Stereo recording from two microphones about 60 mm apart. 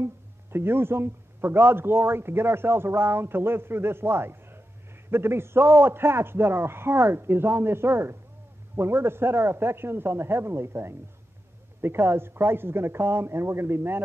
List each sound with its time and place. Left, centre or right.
0.0 s a man's voice: right